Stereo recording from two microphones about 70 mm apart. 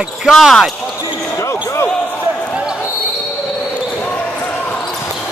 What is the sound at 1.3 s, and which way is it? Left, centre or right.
Basketball bounce, left.